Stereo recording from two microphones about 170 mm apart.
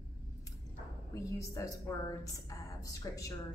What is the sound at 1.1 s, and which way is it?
A woman's voice, 20° left (ahead or behind).